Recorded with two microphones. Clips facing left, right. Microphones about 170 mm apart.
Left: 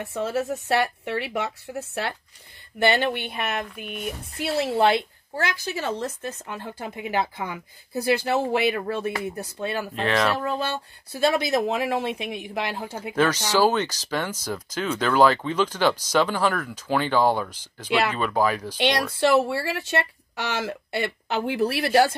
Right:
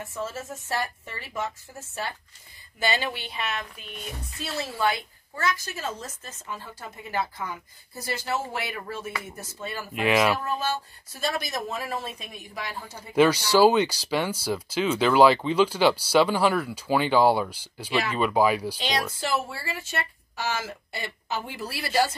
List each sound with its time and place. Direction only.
0.0 s a woman's voice: 70° left (ahead or behind)
9.9 s speech: 10° right (ahead or behind)
10.4 s a woman's voice: 65° left (ahead or behind)
13.1 s speech: 10° right (ahead or behind)
19.1 s a woman's voice: 65° left (ahead or behind)